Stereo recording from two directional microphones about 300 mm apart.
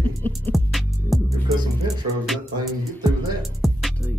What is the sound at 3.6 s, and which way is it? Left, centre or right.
Music, centre.